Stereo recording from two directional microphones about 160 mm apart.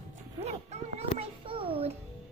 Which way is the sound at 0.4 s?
40° right (ahead or behind).